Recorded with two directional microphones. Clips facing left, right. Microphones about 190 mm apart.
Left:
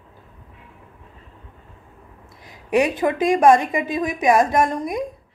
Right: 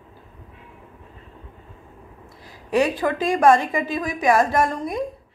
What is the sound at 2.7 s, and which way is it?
A woman's voice, 20° left (ahead or behind).